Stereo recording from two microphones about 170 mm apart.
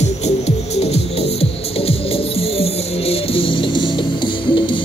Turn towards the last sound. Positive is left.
turn(degrees=30)  # may be behind; listen again after turning